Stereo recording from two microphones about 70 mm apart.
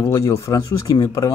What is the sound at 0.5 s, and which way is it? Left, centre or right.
Speech, left.